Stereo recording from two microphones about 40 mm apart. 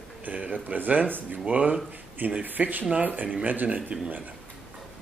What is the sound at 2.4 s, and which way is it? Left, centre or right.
A man's voice, right.